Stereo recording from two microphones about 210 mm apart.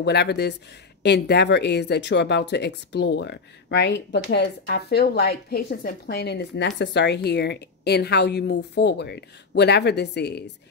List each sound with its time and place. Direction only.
0.0 s speech: 55° left (ahead or behind)